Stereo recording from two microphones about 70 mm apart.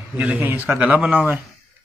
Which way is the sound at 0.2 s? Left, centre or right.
Right.